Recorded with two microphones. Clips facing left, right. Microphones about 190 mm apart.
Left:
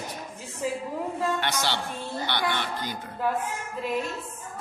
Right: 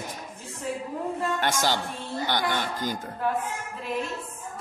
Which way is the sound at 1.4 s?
45° right (ahead or behind).